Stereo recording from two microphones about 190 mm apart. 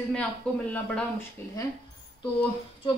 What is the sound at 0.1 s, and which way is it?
Speech, 5° left (ahead or behind).